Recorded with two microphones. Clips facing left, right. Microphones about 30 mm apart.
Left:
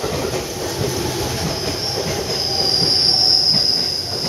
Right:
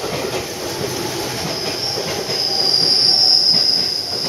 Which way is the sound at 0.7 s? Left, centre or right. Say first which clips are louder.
Left 1 dB; centre.